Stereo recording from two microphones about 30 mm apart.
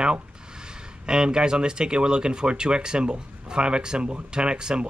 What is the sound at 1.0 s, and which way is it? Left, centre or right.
Speech, right.